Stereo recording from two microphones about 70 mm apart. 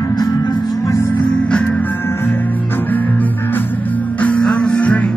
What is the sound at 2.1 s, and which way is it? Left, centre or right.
Music, left.